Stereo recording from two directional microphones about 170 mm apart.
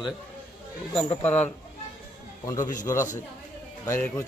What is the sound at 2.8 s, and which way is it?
A man's voice, 15° left (ahead or behind).